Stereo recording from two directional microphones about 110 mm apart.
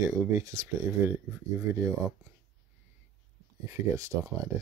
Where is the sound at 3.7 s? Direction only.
25° right (ahead or behind).